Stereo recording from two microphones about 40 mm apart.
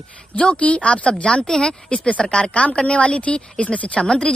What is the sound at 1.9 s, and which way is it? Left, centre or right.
Speech, left.